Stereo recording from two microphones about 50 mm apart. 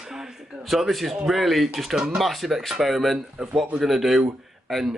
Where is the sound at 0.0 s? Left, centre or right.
Centre.